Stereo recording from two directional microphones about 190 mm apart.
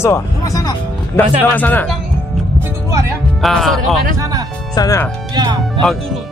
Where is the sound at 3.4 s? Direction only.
Centre (ahead or behind).